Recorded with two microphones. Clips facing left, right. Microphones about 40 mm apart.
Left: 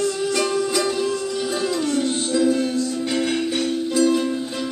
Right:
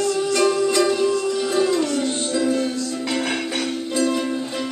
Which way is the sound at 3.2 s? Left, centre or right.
Right.